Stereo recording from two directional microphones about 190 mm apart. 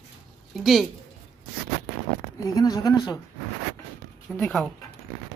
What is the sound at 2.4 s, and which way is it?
Speech, 20° left (ahead or behind).